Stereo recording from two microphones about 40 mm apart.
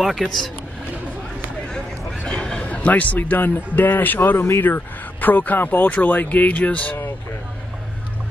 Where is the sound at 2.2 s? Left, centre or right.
Centre.